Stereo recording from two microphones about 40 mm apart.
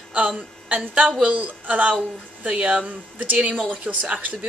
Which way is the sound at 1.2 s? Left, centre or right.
Right.